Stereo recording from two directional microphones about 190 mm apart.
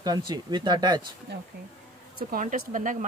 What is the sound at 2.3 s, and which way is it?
Speech, 45° right (ahead or behind).